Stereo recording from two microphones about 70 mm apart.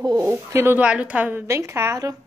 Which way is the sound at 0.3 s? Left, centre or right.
Right.